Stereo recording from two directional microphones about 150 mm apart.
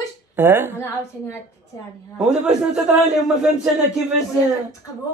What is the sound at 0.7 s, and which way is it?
Speech, 15° left (ahead or behind).